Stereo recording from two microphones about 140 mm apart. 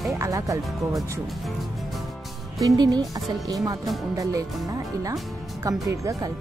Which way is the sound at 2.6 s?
25° right (ahead or behind).